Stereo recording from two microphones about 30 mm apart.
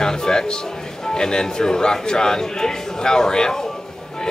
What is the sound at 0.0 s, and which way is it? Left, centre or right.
Speech, left.